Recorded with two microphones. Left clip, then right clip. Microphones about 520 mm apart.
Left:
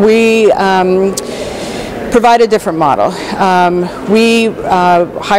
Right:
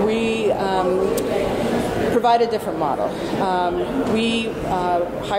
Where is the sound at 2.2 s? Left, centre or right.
Left.